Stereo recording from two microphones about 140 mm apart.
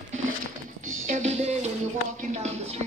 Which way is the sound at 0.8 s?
65° right (ahead or behind).